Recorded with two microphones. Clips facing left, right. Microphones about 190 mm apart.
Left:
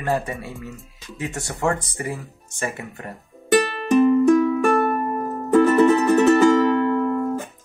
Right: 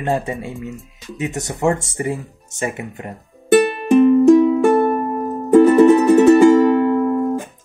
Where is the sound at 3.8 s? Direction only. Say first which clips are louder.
Right 3 dB; 20° right (ahead or behind).